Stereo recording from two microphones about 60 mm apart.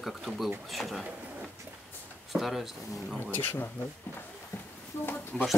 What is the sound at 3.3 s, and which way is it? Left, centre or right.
Speech, left.